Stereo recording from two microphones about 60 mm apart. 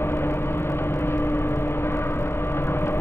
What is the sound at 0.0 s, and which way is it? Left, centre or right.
Vehicle, left.